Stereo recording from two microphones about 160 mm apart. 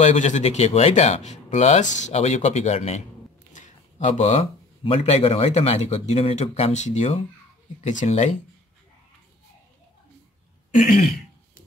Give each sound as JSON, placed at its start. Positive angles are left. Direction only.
{"t": 0.0, "sound": "speech", "side_deg": 45}
{"t": 10.7, "sound": "throat clearing", "side_deg": 60}